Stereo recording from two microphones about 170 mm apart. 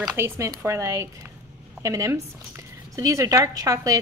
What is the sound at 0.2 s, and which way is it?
Speech, 15° right (ahead or behind).